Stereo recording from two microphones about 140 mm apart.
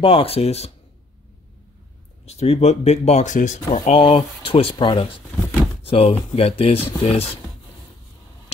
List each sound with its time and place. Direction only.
0.0 s speech: 40° left (ahead or behind)
2.2 s speech: 50° left (ahead or behind)
3.9 s speech: 40° left (ahead or behind)